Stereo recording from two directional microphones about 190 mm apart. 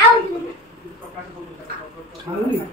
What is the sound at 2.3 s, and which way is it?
Speech, 20° right (ahead or behind).